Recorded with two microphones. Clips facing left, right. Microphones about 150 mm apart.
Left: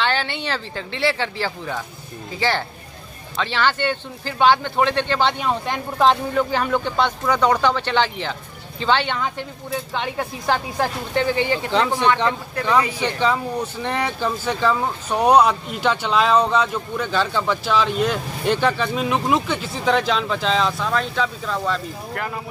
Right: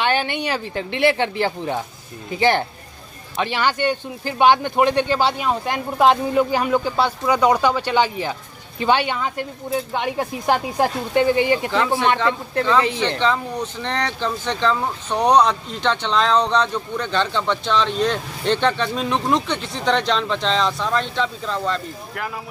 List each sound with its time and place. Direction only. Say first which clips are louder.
0.0 s speech: right 2 dB; 15° right (ahead or behind)
3.3 s speech: even; 15° right (ahead or behind)
11.7 s speech: even; 20° left (ahead or behind); by 22.3 s centre (ahead or behind)